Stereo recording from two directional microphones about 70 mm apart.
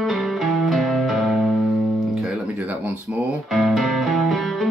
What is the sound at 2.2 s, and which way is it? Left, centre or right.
Guitar, centre.